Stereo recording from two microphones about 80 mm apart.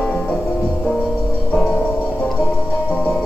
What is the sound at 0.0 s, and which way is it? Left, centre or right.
Music, centre.